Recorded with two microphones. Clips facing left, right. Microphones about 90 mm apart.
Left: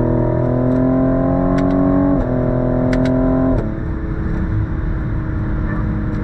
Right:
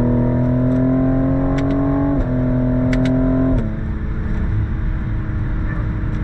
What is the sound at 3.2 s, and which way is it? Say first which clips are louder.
Vehicle: left 2 dB; 20° left (ahead or behind).